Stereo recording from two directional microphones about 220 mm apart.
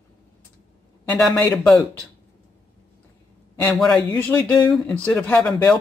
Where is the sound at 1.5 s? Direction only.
5° left (ahead or behind).